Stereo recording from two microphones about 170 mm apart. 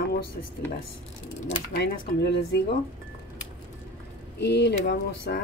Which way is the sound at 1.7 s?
80° left.